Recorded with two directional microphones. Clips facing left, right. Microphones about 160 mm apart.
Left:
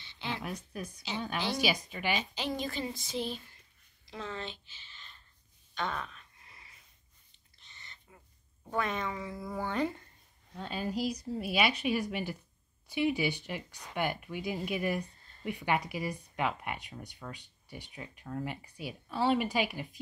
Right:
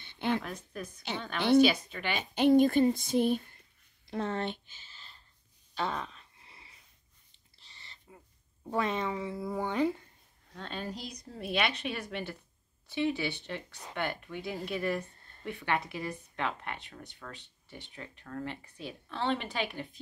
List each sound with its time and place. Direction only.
0.0 s a sound: 55° right (ahead or behind)
0.4 s speech: 10° left (ahead or behind)
0.9 s speech: 60° right (ahead or behind)
1.6 s speech: 10° left (ahead or behind)
2.1 s speech: 55° right (ahead or behind)
4.8 s a sound: 35° right (ahead or behind)
8.6 s a woman's voice: 25° right (ahead or behind); by 10.0 s 10° right (ahead or behind)
10.5 s speech: 5° left (ahead or behind)